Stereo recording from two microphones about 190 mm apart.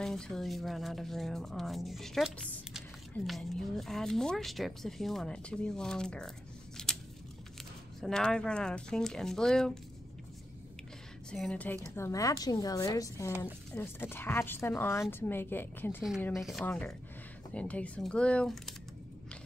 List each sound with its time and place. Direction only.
0.0 s speech: 5° left (ahead or behind)
6.8 s a sound: 5° left (ahead or behind)
8.0 s speech: 5° left (ahead or behind)
11.2 s a woman's voice: 5° left (ahead or behind)